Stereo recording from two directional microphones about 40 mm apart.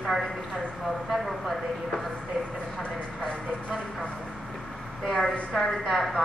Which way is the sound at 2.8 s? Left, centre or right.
Left.